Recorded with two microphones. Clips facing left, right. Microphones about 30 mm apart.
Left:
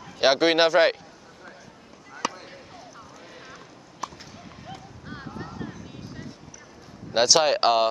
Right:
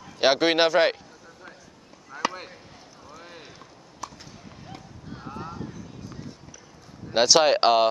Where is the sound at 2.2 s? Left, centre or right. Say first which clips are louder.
Right 2 dB; centre.